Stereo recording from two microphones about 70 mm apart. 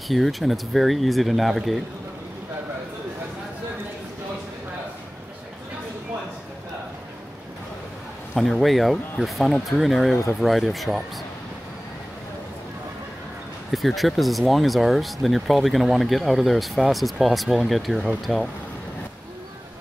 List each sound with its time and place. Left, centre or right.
0.1 s speech: centre
8.4 s speech: centre
13.7 s speech: centre